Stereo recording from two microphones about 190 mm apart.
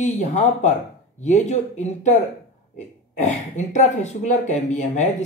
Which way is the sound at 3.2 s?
40° left (ahead or behind).